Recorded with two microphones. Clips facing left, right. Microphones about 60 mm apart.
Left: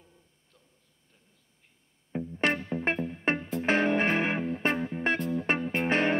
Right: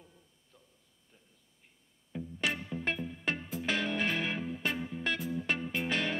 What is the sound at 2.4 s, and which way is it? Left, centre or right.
Music, left.